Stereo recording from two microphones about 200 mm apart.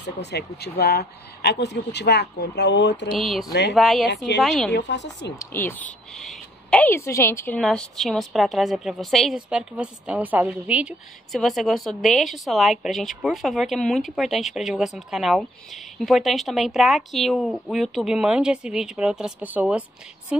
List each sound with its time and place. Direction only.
0.0 s speech: 55° left (ahead or behind)
3.1 s a woman's voice: centre (ahead or behind)
4.7 s speech: 60° left (ahead or behind)
5.5 s a woman's voice: 10° left (ahead or behind); by 19.8 s 10° right (ahead or behind)